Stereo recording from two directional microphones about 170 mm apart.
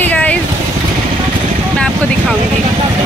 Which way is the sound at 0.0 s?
10° left (ahead or behind).